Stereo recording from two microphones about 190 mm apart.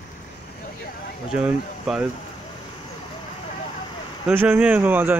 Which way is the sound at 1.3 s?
5° right (ahead or behind).